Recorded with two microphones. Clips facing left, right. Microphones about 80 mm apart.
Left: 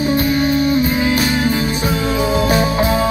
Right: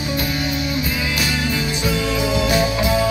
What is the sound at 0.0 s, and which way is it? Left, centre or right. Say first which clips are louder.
Music: left 8 dB; left.